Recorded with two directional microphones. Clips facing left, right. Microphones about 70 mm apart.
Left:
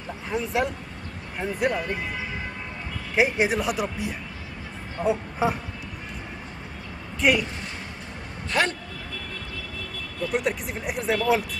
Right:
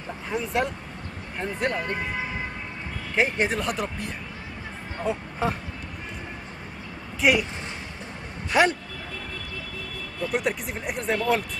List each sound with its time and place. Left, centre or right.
0.3 s speech: centre
3.2 s speech: centre
7.2 s speech: centre
8.5 s a man's voice: centre
10.3 s speech: centre